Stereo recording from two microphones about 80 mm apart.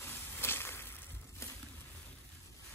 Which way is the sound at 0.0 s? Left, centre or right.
Left.